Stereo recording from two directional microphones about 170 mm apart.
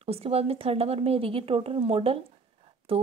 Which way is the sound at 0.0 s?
35° right (ahead or behind).